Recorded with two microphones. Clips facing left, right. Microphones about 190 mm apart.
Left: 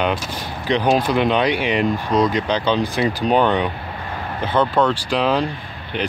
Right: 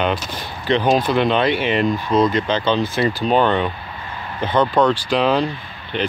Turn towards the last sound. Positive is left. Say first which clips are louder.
# right 1 dB
turn(degrees=10)  # may be behind; listen again after turning